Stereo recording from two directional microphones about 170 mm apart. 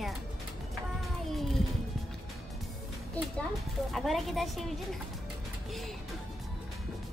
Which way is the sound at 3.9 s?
Centre (ahead or behind).